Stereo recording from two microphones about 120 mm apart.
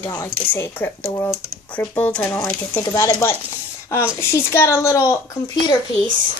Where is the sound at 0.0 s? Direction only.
20° left (ahead or behind).